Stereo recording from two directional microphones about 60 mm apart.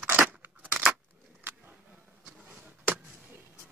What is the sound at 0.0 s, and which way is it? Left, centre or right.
Scissors, right.